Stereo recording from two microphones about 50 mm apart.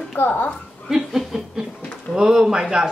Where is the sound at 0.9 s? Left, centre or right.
Centre.